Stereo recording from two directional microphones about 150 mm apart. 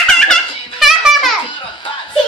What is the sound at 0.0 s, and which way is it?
Music, centre (ahead or behind).